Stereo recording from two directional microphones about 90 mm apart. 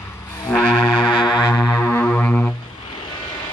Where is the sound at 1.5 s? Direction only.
30° left (ahead or behind).